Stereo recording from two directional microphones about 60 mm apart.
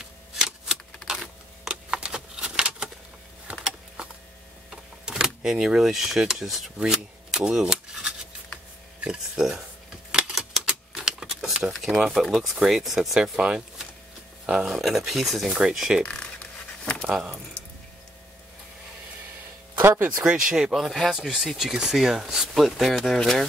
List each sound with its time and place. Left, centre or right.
0.0 s shuffling cards: centre
1.0 s a sound: centre
4.6 s speech: centre
10.3 s typewriter: centre
11.0 s a sound: centre
11.8 s speech: centre
13.4 s speech: centre
15.4 s speech: centre
16.0 s speech: centre
19.8 s speech: right
20.2 s speech: centre
20.7 s speech: centre